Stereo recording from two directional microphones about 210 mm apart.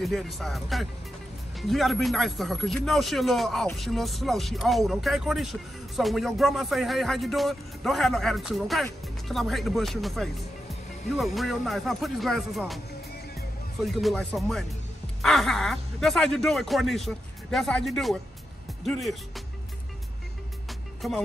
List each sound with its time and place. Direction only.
0.0 s speech: centre (ahead or behind)
13.9 s speech: centre (ahead or behind)
21.0 s speech: centre (ahead or behind)